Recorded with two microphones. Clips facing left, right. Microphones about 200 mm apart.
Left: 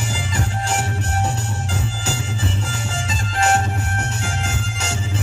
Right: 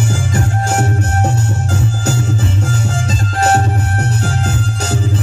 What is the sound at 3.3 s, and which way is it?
Music, 40° right (ahead or behind).